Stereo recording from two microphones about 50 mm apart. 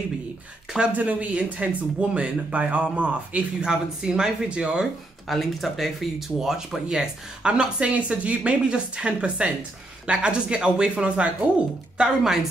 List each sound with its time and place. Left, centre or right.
0.9 s speech: right
3.6 s speech: centre
5.3 s speech: centre; by 11.3 s right
12.0 s speech: centre